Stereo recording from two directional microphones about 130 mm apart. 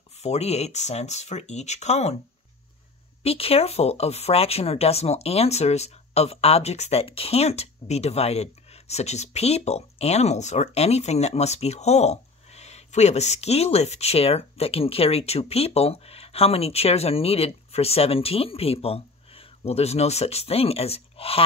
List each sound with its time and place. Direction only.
0.2 s speech: 55° left (ahead or behind)
3.3 s speech: 50° left (ahead or behind)